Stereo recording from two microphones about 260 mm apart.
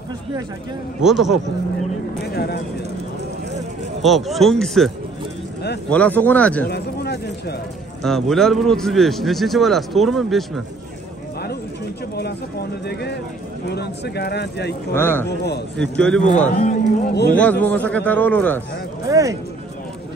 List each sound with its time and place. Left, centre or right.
1.0 s a man's voice: centre
2.3 s speech: left
4.0 s a man's voice: centre
6.7 s a sound: left
8.0 s a man's voice: centre
12.8 s speech: left
15.0 s a man's voice: centre
15.2 s speech: left
15.8 s a man's voice: centre
16.3 s a man's voice: left
17.4 s a man's voice: centre
19.0 s speech: centre